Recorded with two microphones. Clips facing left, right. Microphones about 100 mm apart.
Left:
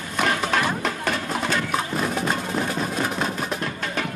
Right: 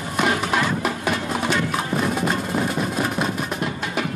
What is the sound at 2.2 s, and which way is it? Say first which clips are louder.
Music: right 2 dB; 5° right (ahead or behind).